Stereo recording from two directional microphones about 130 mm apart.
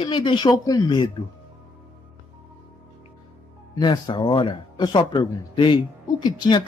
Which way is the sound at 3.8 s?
35° left (ahead or behind).